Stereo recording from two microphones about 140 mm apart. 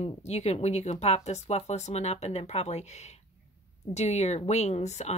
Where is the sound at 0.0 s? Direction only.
50° left (ahead or behind).